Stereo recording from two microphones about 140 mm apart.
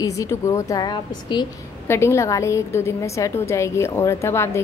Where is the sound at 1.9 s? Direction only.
20° left (ahead or behind).